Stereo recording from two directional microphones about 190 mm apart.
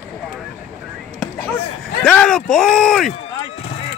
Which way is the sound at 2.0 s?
5° left (ahead or behind).